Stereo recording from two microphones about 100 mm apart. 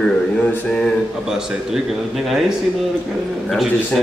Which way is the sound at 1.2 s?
5° right (ahead or behind).